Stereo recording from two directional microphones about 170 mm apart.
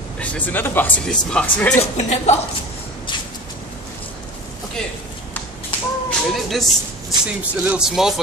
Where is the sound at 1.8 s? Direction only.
40° left (ahead or behind).